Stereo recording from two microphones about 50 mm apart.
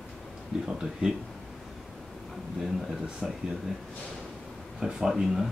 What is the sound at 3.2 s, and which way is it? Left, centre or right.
Speech, centre.